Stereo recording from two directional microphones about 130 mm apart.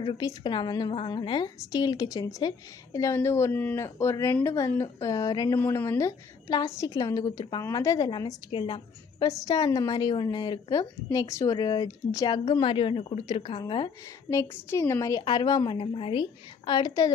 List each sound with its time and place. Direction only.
0.0 s a woman's voice: 30° left (ahead or behind)
9.3 s a woman's voice: 25° left (ahead or behind)
14.3 s a woman's voice: 20° left (ahead or behind)